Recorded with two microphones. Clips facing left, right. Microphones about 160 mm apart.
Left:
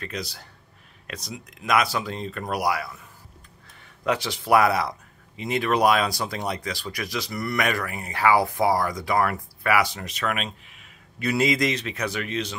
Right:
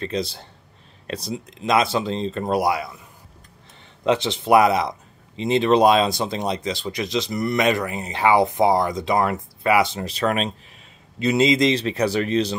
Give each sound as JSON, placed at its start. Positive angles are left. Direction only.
{"t": 0.0, "sound": "speech", "side_deg": -25}
{"t": 4.0, "sound": "speech", "side_deg": -25}
{"t": 11.1, "sound": "speech", "side_deg": -25}